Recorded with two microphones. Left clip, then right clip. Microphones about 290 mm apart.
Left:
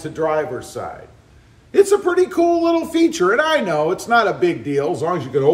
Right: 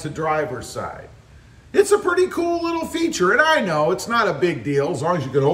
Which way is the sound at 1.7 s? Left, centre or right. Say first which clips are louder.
Left 2 dB; centre.